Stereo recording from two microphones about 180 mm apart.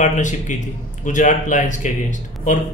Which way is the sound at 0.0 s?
45° left (ahead or behind).